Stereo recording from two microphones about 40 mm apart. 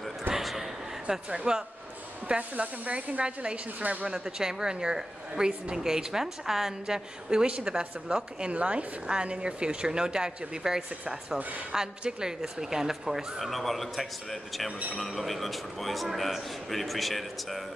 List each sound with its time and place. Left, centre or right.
0.3 s a sound: centre
1.3 s speech: right
2.2 s speech: right
4.1 s a woman's voice: centre
7.2 s a woman's voice: right
13.4 s a man's voice: centre